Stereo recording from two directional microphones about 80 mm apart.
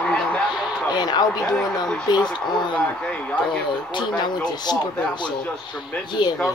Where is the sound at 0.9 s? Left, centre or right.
Left.